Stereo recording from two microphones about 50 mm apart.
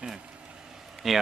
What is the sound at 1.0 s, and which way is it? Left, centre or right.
Speech, centre.